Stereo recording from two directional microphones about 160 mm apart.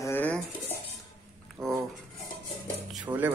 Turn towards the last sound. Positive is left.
turn(degrees=-10)  # may be behind; listen again after turning